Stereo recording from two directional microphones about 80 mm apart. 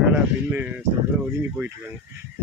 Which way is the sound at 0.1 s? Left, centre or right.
Centre.